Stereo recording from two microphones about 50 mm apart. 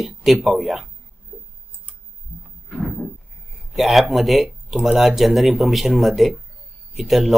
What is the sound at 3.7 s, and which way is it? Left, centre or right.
Speech, centre.